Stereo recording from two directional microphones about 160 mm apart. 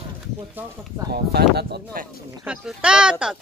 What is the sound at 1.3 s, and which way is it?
Speech, 90° right.